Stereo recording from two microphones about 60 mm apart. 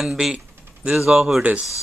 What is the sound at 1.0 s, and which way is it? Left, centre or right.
Speech, centre.